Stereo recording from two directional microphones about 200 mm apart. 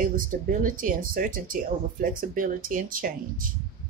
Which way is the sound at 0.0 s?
40° right (ahead or behind).